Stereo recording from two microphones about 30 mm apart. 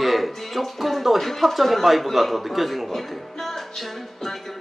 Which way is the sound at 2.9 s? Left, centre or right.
Centre.